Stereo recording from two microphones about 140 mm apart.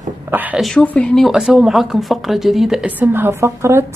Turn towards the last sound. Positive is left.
turn(degrees=-20)  # may be behind; listen again after turning